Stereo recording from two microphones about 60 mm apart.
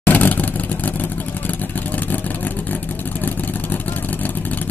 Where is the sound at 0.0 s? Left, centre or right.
Left.